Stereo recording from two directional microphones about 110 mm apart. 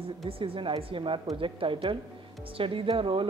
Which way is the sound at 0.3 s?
55° right (ahead or behind).